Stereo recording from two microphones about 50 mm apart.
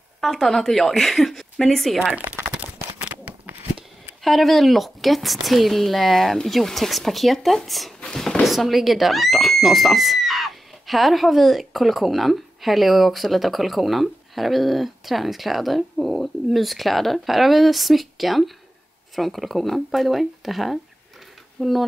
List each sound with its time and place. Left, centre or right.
0.2 s a woman's voice: centre
2.5 s a sound: right
4.2 s a woman's voice: centre
8.5 s a woman's voice: centre